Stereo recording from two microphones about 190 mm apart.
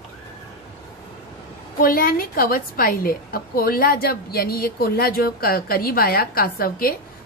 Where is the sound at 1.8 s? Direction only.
50° left (ahead or behind).